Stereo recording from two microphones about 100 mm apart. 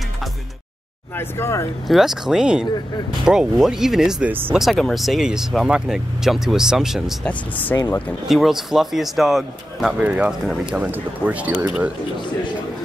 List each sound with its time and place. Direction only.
1.1 s speech: 25° left (ahead or behind)
1.9 s speech: 5° right (ahead or behind)
4.3 s speech: 20° right (ahead or behind)
4.6 s speech: centre (ahead or behind)
7.2 s speech: 15° left (ahead or behind)
7.7 s speech: 30° left (ahead or behind)
8.3 s speech: 5° right (ahead or behind)